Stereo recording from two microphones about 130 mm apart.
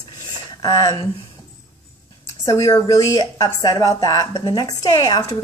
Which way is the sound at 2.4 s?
25° left (ahead or behind).